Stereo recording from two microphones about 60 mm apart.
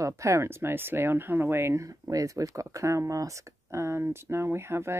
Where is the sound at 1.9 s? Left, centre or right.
Right.